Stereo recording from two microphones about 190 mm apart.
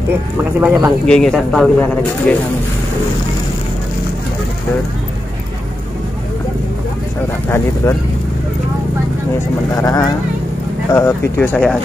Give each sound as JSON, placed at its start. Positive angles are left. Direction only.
{"t": 0.4, "sound": "speech", "side_deg": -10}
{"t": 1.0, "sound": "speech", "side_deg": 5}
{"t": 7.4, "sound": "speech", "side_deg": 15}
{"t": 9.8, "sound": "speech", "side_deg": 20}